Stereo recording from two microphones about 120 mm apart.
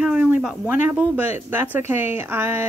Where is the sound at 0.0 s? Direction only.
10° right (ahead or behind).